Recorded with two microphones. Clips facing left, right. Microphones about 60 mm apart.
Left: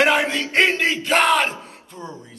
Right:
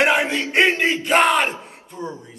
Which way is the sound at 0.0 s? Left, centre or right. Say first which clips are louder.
Even; right.